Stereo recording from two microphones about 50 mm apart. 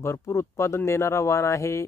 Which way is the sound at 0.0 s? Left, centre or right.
Left.